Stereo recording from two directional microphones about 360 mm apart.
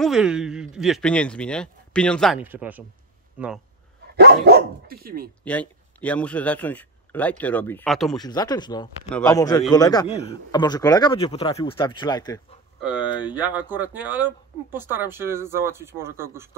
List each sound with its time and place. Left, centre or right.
0.0 s speech: centre
4.2 s speech: right
5.4 s speech: centre
13.3 s speech: centre